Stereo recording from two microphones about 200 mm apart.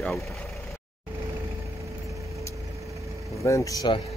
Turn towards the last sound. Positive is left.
turn(degrees=20)  # may be behind; listen again after turning